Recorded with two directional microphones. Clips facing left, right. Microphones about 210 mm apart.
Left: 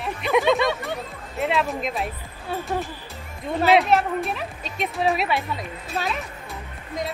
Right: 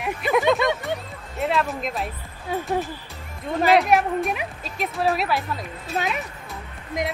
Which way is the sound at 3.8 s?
15° right (ahead or behind).